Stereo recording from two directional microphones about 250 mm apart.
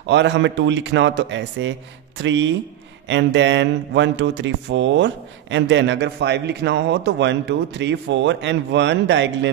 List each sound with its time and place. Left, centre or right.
0.0 s speech: right